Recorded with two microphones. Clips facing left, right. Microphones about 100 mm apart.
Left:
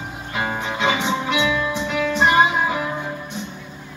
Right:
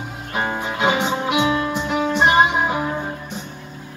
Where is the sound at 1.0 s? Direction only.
45° right (ahead or behind).